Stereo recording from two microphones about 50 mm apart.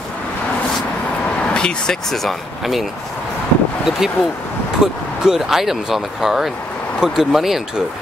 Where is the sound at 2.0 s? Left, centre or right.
Centre.